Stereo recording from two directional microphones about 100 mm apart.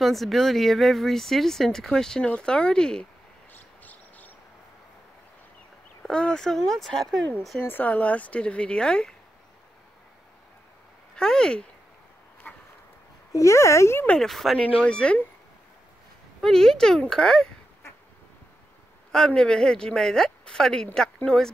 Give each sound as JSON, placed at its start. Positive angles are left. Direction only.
{"t": 0.0, "sound": "speech", "side_deg": 0}
{"t": 3.5, "sound": "vehicle", "side_deg": 15}
{"t": 6.0, "sound": "speech", "side_deg": 5}
{"t": 7.6, "sound": "speech", "side_deg": 20}
{"t": 11.1, "sound": "speech", "side_deg": 10}
{"t": 13.3, "sound": "speech", "side_deg": 30}
{"t": 14.0, "sound": "speech", "side_deg": 5}
{"t": 16.3, "sound": "speech", "side_deg": 5}
{"t": 19.1, "sound": "speech", "side_deg": 10}